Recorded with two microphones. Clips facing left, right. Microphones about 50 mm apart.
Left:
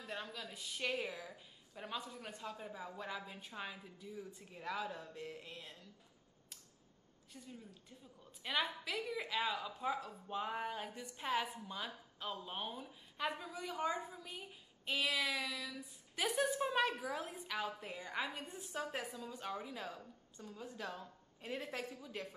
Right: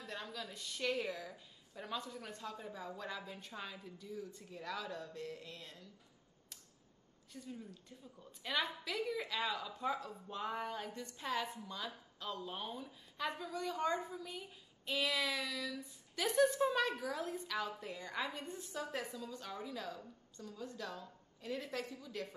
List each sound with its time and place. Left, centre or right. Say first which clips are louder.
0.0 s a woman's voice: even; centre
7.3 s a woman's voice: right 5 dB; centre; by 22.3 s left